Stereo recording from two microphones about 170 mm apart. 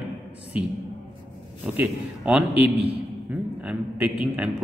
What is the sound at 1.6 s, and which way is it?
A man's voice, 10° right (ahead or behind).